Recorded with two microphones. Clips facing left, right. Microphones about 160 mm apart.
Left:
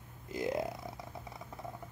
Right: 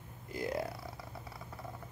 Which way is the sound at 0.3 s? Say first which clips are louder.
Left 2 dB; 20° left (ahead or behind).